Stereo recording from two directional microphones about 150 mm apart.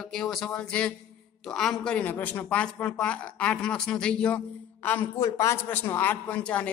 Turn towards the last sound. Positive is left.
turn(degrees=10)  # may be behind; listen again after turning